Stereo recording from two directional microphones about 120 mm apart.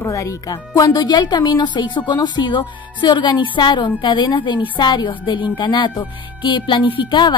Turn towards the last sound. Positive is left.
turn(degrees=40)  # may be behind; listen again after turning